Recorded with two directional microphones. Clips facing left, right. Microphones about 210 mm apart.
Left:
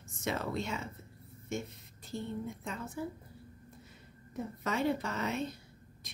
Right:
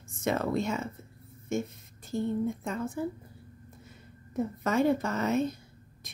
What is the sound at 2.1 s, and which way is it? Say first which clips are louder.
Speech: right 9 dB; 50° right (ahead or behind).